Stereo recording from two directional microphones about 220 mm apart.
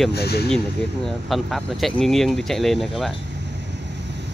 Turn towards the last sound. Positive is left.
turn(degrees=0)  # may be behind; listen again after turning